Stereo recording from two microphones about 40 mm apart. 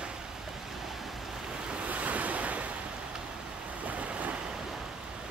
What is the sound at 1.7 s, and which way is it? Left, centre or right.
Waves, right.